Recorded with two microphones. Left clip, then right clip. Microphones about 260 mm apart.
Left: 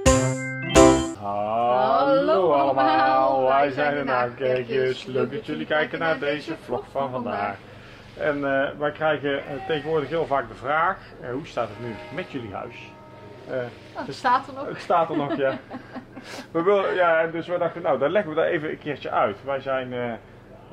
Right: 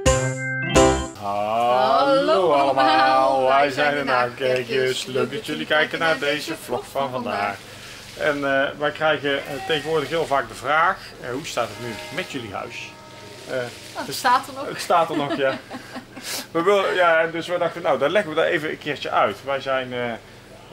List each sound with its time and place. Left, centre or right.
0.0 s music: centre
1.3 s a sound: centre
4.4 s a man's voice: centre
14.0 s speech: centre
14.4 s speech: left
14.7 s a man's voice: centre